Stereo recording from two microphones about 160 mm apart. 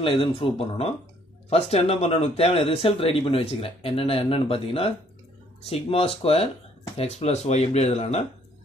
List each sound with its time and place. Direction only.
0.0 s speech: 35° left (ahead or behind)